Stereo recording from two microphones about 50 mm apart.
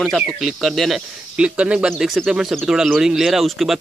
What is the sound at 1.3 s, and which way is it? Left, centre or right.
Speech, right.